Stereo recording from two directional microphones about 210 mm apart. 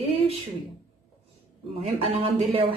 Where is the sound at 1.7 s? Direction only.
30° right (ahead or behind).